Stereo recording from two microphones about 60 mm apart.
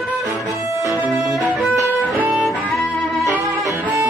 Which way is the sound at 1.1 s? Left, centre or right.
Centre.